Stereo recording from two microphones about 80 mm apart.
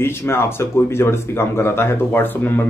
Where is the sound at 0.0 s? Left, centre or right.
Left.